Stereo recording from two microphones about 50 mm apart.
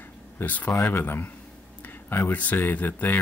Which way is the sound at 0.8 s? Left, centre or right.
Left.